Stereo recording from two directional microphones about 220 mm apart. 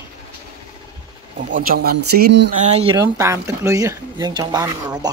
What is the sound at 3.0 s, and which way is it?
Speech, 15° right (ahead or behind).